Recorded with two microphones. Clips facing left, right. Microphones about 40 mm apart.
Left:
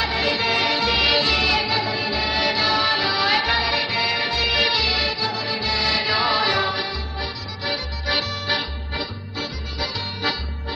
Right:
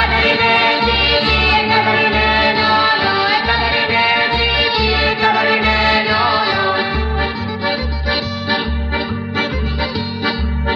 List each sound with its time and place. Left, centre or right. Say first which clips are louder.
0.0 s music: right 8 dB; right
0.7 s music: right 5 dB; right
3.6 s music: right 8 dB; right; by 4.9 s centre
4.9 s music: right 10 dB; right
6.1 s music: right 5 dB; centre
6.7 s music: right 9 dB; right